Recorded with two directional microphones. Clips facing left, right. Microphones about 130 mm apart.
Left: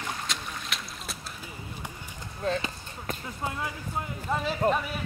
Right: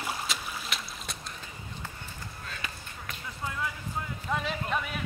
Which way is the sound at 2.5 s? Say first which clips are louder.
Left 14 dB; 30° left (ahead or behind).